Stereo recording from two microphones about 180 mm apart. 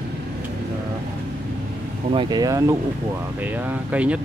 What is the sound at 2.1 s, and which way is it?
Speech, 25° right (ahead or behind).